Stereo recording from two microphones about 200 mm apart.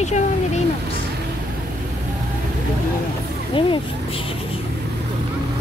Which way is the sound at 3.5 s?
25° left (ahead or behind).